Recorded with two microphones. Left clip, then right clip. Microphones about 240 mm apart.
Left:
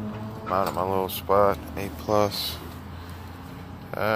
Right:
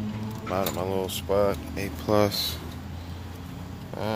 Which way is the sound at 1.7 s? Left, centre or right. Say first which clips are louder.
Even; centre.